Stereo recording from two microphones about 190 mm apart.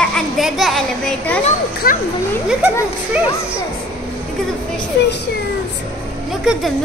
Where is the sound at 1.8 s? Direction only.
50° left (ahead or behind).